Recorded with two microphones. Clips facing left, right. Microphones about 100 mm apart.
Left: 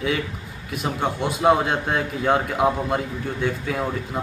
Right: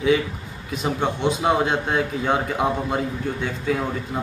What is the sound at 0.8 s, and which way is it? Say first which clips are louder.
A man's voice: right 2 dB; centre (ahead or behind).